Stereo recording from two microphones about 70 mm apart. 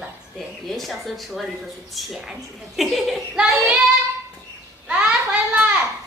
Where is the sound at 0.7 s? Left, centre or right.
Centre.